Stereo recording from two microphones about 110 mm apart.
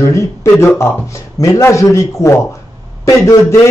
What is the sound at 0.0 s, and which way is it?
A man's voice, 25° left (ahead or behind).